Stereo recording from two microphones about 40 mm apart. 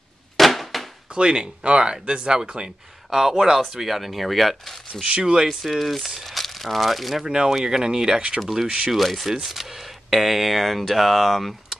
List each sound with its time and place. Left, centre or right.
0.4 s a sound: centre
1.1 s speech: centre
3.7 s speech: centre
5.0 s speech: centre
5.6 s speech: centre
7.2 s speech: centre
8.4 s speech: centre